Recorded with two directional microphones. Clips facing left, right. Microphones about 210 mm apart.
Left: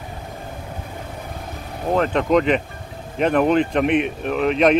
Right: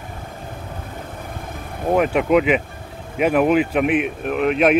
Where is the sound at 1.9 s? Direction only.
10° right (ahead or behind).